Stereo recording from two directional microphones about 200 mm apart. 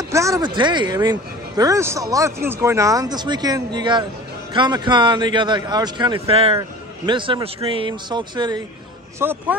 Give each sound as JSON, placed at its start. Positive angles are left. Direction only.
{"t": 0.1, "sound": "speech", "side_deg": -15}
{"t": 9.2, "sound": "speech", "side_deg": -10}